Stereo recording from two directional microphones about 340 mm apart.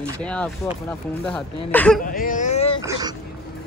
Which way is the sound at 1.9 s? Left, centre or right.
Left.